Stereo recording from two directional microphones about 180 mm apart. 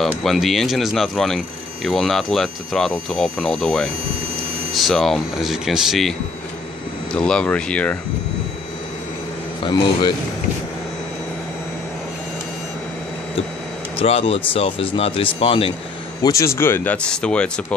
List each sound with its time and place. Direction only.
0.0 s speech: centre (ahead or behind)
7.2 s speech: 5° left (ahead or behind)
9.7 s a man's voice: 25° left (ahead or behind)
13.9 s speech: 35° left (ahead or behind)
16.2 s speech: 20° left (ahead or behind)